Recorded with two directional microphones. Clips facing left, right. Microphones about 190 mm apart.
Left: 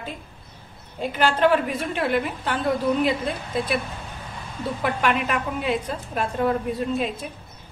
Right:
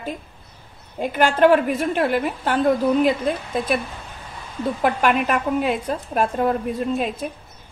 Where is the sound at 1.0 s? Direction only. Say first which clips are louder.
Right 4 dB; 50° right (ahead or behind).